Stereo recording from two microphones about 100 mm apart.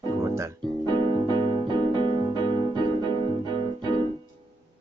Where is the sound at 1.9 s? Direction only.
60° right (ahead or behind).